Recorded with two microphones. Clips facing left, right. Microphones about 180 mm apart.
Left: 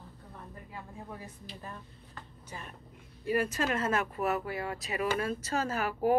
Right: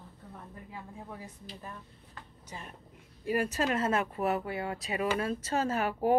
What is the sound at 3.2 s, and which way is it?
Speech, 40° right (ahead or behind).